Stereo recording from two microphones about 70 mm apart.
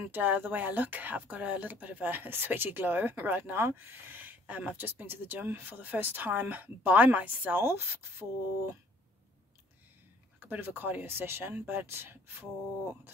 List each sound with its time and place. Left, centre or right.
0.0 s speech: right
10.5 s speech: right